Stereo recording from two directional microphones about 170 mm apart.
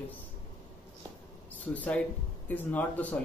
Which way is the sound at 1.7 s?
10° left (ahead or behind).